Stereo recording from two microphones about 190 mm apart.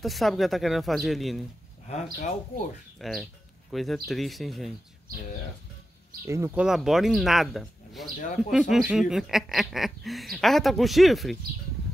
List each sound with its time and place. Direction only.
0.0 s speech: centre (ahead or behind)
1.9 s speech: 40° left (ahead or behind)
3.0 s speech: centre (ahead or behind)
6.2 s speech: 15° right (ahead or behind)
6.6 s speech: centre (ahead or behind)